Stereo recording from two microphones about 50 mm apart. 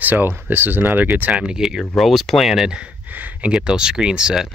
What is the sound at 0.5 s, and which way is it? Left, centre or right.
Speech, right.